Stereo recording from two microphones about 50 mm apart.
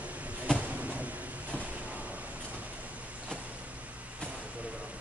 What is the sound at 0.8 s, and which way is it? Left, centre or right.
Vehicle, right.